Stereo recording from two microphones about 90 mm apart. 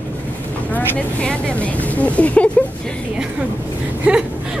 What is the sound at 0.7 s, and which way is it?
Speech, 15° left (ahead or behind).